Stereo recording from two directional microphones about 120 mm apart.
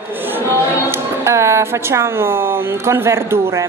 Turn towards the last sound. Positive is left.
turn(degrees=-20)  # may be behind; listen again after turning